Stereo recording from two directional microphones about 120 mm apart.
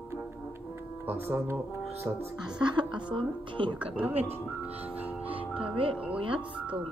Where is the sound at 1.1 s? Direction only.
20° right (ahead or behind).